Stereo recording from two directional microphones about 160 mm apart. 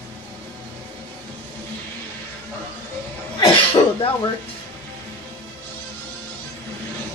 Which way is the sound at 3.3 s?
30° left (ahead or behind).